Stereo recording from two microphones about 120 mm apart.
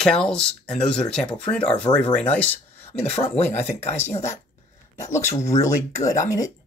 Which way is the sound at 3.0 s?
55° left (ahead or behind).